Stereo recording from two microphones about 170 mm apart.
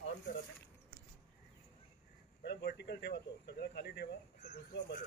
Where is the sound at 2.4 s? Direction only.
80° left.